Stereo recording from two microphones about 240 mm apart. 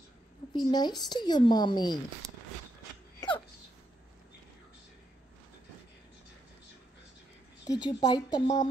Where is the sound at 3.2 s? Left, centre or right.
Centre.